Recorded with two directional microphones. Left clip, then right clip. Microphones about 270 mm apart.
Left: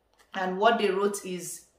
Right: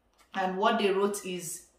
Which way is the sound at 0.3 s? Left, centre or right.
Centre.